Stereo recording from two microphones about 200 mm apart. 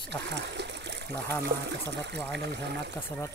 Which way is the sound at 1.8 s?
60° right (ahead or behind).